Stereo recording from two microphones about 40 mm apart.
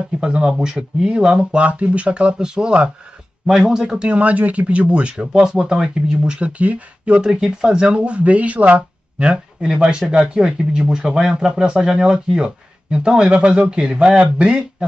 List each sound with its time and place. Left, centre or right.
0.2 s speech: right
4.2 s speech: right
5.1 s speech: centre
7.2 s speech: centre
7.7 s speech: right